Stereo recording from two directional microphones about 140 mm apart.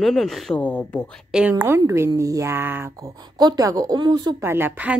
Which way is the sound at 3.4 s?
30° right (ahead or behind).